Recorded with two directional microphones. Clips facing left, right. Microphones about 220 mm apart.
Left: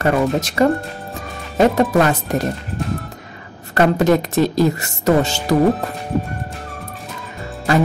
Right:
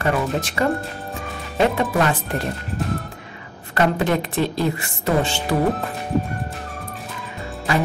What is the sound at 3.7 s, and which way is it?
A woman's voice, 40° left (ahead or behind).